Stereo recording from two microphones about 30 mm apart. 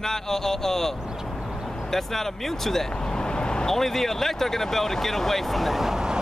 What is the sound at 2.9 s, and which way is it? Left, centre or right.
Vehicle, left.